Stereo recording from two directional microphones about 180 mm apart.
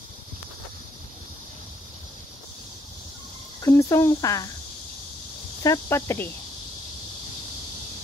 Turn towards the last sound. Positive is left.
turn(degrees=15)  # may be behind; listen again after turning